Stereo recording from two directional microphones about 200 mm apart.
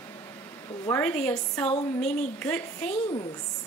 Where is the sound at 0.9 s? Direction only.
5° left (ahead or behind).